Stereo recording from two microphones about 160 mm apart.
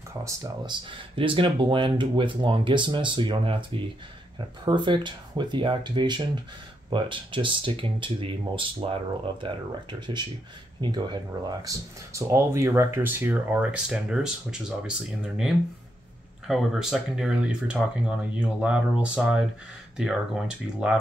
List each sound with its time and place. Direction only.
0.2 s speech: 20° right (ahead or behind)
0.8 s speech: 35° right (ahead or behind); by 14.9 s 5° right (ahead or behind)
16.4 s speech: centre (ahead or behind)